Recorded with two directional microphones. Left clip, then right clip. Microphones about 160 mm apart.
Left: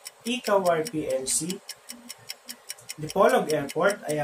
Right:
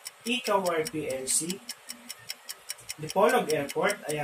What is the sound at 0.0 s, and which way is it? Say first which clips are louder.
Speech: even; centre (ahead or behind).